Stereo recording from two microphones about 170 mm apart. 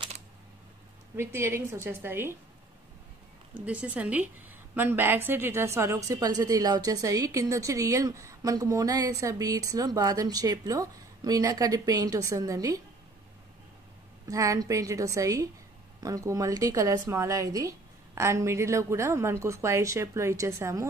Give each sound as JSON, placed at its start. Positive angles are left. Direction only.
{"t": 1.1, "sound": "a woman's voice", "side_deg": -15}
{"t": 3.6, "sound": "a woman's voice", "side_deg": -10}
{"t": 14.2, "sound": "a woman's voice", "side_deg": -20}